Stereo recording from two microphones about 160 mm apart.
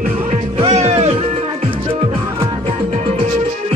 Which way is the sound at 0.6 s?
40° right (ahead or behind).